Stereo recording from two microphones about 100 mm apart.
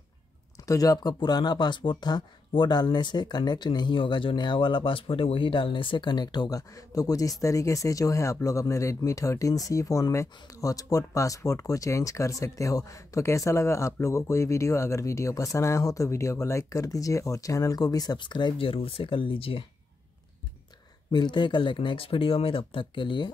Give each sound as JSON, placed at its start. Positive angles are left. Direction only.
{"t": 0.7, "sound": "speech", "side_deg": 35}
{"t": 21.1, "sound": "speech", "side_deg": 50}